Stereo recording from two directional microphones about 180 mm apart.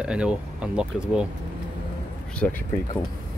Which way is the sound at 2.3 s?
5° left (ahead or behind).